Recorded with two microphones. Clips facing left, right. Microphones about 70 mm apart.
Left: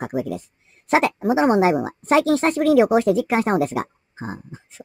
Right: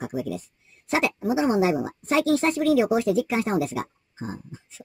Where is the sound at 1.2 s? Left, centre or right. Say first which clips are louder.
Left 3 dB; left.